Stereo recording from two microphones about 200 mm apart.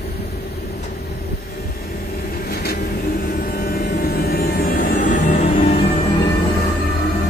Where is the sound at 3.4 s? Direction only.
45° left (ahead or behind).